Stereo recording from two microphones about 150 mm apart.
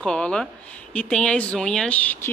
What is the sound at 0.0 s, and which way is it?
A woman's voice, 5° left (ahead or behind).